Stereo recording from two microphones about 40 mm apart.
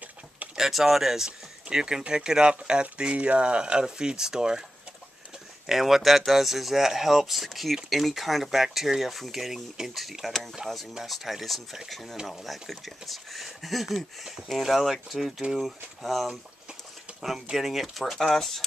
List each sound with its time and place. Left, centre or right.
0.6 s speech: centre
5.7 s speech: centre
17.5 s speech: centre